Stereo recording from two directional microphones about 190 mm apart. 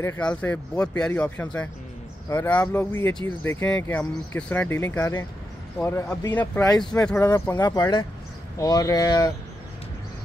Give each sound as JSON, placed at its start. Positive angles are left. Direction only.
{"t": 0.0, "sound": "speech", "side_deg": 10}
{"t": 6.8, "sound": "speech", "side_deg": 5}